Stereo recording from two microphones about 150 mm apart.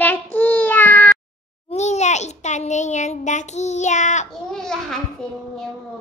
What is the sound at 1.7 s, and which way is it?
A child's voice, 50° left (ahead or behind).